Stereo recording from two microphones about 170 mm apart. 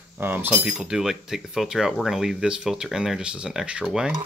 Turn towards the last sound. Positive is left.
turn(degrees=-5)  # may be behind; listen again after turning